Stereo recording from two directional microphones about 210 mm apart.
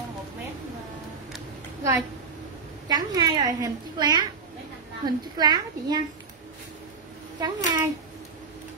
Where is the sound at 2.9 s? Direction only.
20° right (ahead or behind).